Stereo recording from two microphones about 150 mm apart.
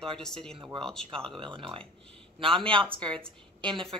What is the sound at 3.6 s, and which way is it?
Speech, 35° right (ahead or behind).